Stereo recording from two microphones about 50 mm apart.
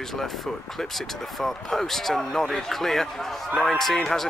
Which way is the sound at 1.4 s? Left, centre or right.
Centre.